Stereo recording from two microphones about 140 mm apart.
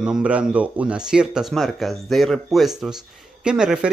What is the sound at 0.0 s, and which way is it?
Speech, 5° right (ahead or behind).